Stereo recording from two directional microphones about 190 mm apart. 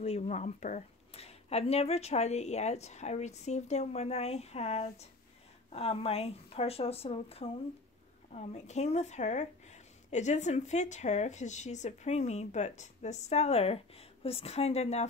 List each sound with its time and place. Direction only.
0.0 s speech: 35° left (ahead or behind)